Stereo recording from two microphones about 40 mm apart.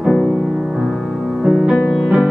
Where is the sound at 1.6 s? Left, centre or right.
Centre.